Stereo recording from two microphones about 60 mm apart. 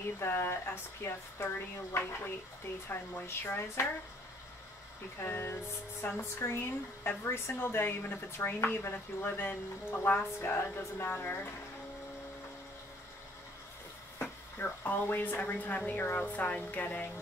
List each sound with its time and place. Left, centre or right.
0.2 s speech: left
5.2 s speech: left
10.4 s speech: left
14.6 s speech: left